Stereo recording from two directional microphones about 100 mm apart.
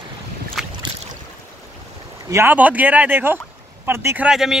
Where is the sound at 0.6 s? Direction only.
5° right (ahead or behind).